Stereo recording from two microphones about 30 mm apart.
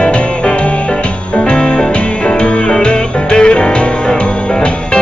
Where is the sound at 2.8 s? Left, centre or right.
Left.